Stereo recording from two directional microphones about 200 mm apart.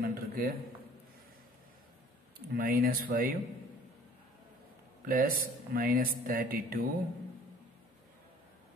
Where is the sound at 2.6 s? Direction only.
45° right (ahead or behind).